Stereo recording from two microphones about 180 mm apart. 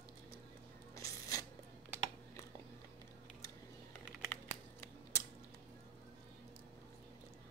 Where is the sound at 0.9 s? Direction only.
20° left (ahead or behind).